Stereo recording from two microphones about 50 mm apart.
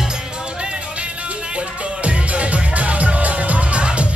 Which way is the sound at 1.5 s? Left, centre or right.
Right.